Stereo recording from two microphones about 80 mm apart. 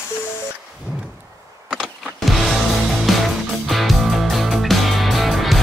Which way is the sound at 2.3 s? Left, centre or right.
Centre.